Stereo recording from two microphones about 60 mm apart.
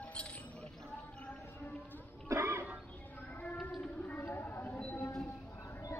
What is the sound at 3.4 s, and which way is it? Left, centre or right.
Child singing, left.